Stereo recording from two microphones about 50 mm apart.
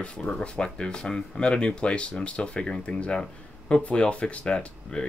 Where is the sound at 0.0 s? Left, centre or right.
Centre.